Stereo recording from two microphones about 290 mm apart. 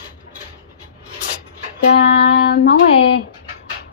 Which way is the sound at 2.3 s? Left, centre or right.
Left.